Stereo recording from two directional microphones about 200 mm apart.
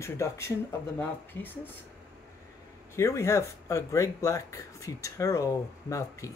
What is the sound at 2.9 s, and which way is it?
Speech, 15° left (ahead or behind).